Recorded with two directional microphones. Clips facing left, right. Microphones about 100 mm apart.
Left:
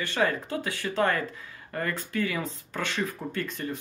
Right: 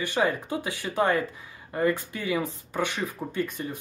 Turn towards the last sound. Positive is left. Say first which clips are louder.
# right 2 dB
turn(degrees=-10)  # may be behind; listen again after turning